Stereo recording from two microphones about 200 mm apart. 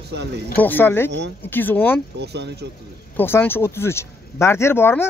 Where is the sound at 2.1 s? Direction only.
55° right (ahead or behind).